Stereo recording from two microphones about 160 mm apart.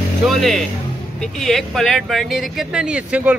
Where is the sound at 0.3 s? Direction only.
Centre (ahead or behind).